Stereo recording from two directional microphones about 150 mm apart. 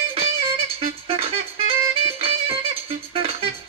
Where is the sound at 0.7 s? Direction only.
40° right (ahead or behind).